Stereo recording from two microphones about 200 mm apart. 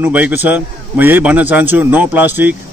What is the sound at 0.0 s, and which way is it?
Speech, 10° right (ahead or behind).